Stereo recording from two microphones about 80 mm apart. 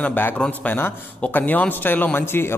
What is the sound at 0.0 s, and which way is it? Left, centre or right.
A man's voice, left.